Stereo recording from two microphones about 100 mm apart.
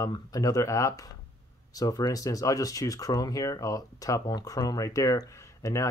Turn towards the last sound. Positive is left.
turn(degrees=30)  # may be behind; listen again after turning